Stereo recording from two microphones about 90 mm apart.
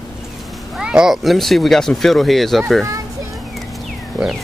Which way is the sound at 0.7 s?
10° right (ahead or behind).